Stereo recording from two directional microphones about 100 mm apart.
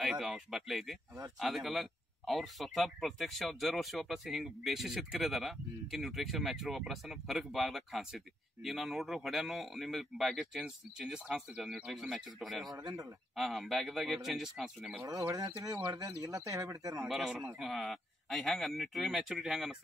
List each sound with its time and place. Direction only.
0.0 s speech: 5° right (ahead or behind)
12.6 s speech: 35° right (ahead or behind)
13.6 s speech: centre (ahead or behind)
15.0 s speech: 35° right (ahead or behind)
17.1 s speech: centre (ahead or behind)